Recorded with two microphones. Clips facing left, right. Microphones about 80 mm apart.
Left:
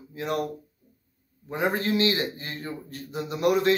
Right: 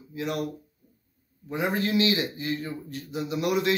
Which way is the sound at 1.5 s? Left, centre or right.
Left.